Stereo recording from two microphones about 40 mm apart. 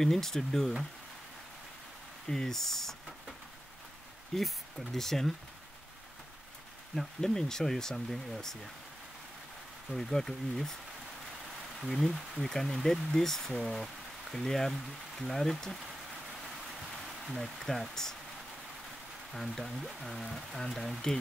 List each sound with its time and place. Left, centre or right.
0.0 s speech: centre
2.2 s speech: centre
4.4 s speech: centre
7.0 s speech: centre
9.8 s speech: centre
11.8 s speech: centre
17.4 s speech: centre
19.3 s speech: centre
20.7 s speech: centre